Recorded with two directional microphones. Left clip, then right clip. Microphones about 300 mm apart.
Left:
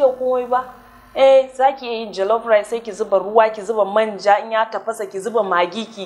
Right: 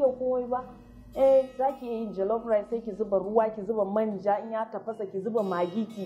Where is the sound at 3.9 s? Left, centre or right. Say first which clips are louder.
Left 12 dB; centre.